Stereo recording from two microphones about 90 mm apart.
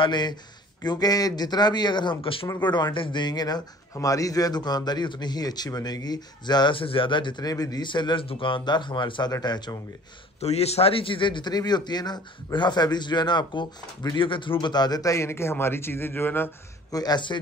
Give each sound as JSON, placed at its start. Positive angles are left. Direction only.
{"t": 0.0, "sound": "a man's voice", "side_deg": 55}
{"t": 6.8, "sound": "a man's voice", "side_deg": 80}
{"t": 7.4, "sound": "a man's voice", "side_deg": 45}
{"t": 9.3, "sound": "a man's voice", "side_deg": 45}
{"t": 10.8, "sound": "a man's voice", "side_deg": 90}
{"t": 16.9, "sound": "a man's voice", "side_deg": 50}